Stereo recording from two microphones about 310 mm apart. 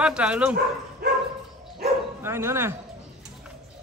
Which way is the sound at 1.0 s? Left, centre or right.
Right.